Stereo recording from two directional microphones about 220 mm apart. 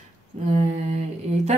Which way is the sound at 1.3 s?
35° right (ahead or behind).